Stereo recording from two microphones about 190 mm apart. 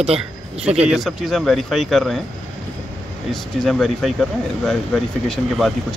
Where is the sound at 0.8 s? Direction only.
Centre (ahead or behind).